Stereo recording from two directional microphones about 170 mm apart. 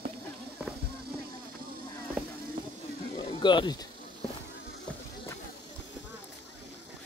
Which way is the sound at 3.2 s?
25° left (ahead or behind).